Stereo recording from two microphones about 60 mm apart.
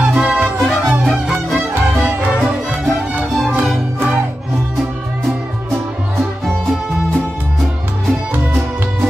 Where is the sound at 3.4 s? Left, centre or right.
Centre.